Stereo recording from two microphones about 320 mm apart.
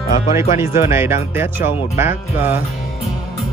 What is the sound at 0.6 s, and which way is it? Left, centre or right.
Speech, centre.